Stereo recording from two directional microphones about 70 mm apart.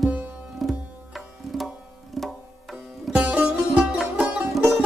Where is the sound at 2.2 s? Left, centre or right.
Centre.